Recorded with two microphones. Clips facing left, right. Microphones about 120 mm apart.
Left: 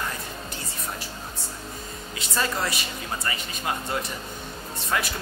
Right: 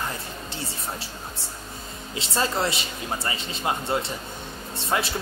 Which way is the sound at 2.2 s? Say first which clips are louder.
Right 2 dB; 25° right (ahead or behind).